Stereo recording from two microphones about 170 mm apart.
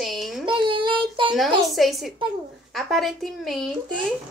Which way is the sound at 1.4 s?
Centre (ahead or behind).